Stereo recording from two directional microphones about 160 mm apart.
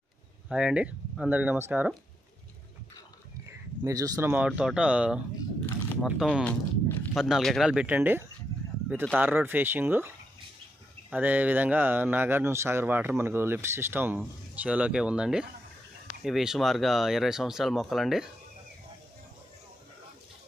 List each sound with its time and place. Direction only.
0.5 s speech: 5° right (ahead or behind)
3.8 s speech: 20° right (ahead or behind)
4.3 s speech: 10° right (ahead or behind)
6.4 s walk: 10° left (ahead or behind)
7.2 s speech: centre (ahead or behind)